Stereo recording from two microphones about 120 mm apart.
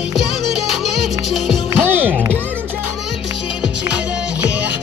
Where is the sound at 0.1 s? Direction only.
5° right (ahead or behind).